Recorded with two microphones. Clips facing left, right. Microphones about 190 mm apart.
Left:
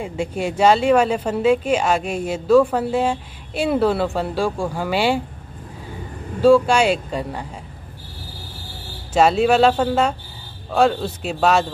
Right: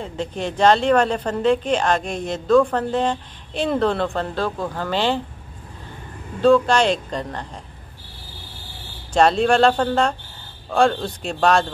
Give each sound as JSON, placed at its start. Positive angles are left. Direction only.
{"t": 0.0, "sound": "speech", "side_deg": 10}
{"t": 6.4, "sound": "speech", "side_deg": 10}
{"t": 9.1, "sound": "a man's voice", "side_deg": 5}